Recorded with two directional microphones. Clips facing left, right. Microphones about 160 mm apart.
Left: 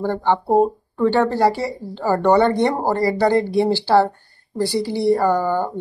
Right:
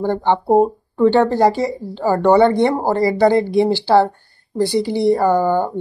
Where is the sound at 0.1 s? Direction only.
20° right (ahead or behind).